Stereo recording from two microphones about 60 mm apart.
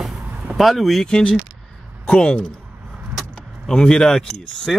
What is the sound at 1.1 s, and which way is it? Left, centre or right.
Speech, centre.